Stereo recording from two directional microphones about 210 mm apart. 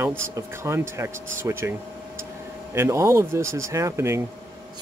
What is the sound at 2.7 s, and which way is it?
Speech, 15° right (ahead or behind).